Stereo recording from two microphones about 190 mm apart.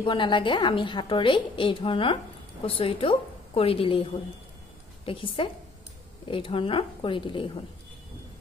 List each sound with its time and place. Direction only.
0.0 s a woman's voice: 25° left (ahead or behind)